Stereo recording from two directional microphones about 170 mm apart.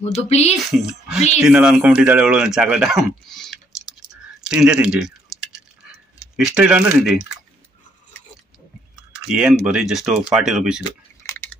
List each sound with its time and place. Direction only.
0.3 s speech: 40° left (ahead or behind)
0.7 s speech: 5° right (ahead or behind)
6.3 s speech: 5° right (ahead or behind)
8.9 s speech: 5° right (ahead or behind)
11.2 s drip: 15° left (ahead or behind)